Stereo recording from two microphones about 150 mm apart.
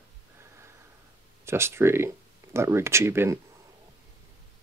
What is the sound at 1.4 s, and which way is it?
Speech, 15° right (ahead or behind).